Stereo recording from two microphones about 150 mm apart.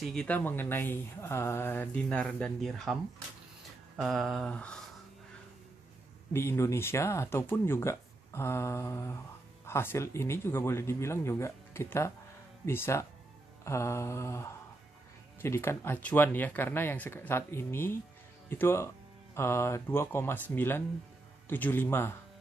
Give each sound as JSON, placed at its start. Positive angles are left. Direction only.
{"t": 0.0, "sound": "speech", "side_deg": 5}
{"t": 3.9, "sound": "a sound", "side_deg": 0}
{"t": 6.3, "sound": "speech", "side_deg": 15}
{"t": 13.7, "sound": "mantra", "side_deg": 20}
{"t": 15.4, "sound": "speech", "side_deg": 15}